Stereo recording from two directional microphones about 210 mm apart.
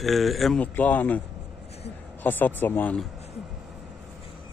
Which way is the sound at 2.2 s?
10° left (ahead or behind).